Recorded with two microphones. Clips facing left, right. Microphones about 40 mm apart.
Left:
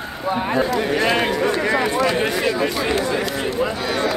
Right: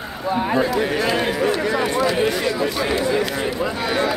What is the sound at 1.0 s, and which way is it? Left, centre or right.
Speech, left.